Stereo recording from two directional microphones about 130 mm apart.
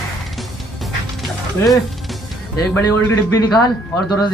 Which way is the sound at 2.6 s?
25° left (ahead or behind).